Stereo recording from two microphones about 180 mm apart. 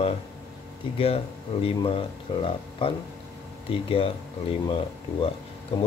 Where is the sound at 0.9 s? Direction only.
35° left (ahead or behind).